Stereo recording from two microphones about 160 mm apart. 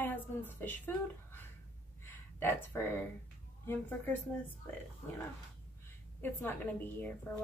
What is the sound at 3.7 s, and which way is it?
Speech, 15° left (ahead or behind).